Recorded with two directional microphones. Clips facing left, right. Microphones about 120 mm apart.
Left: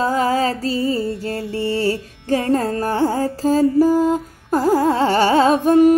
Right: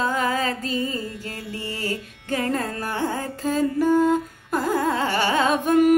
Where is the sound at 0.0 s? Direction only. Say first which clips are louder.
Left 6 dB; 35° left (ahead or behind).